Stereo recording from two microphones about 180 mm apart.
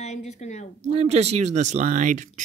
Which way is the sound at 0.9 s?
35° right (ahead or behind).